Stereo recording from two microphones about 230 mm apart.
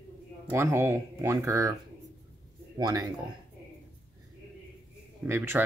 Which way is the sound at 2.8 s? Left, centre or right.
Centre.